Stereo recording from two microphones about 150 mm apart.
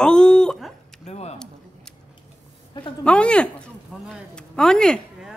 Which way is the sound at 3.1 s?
5° left (ahead or behind).